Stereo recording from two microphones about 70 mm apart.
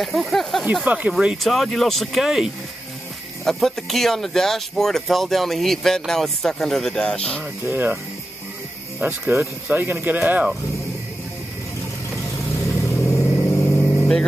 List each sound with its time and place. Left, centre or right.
0.0 s speech: centre
0.8 s speech: centre
1.4 s speech: centre
3.4 s speech: centre
7.6 s speech: right
9.3 s speech: right
12.6 s vehicle: left
13.4 s vehicle: left